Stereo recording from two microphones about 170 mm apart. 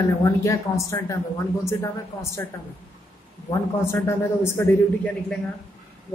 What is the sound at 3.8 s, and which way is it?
Speech, 15° left (ahead or behind).